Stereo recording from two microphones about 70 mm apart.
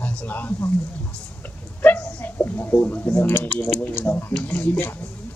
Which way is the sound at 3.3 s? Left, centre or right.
Left.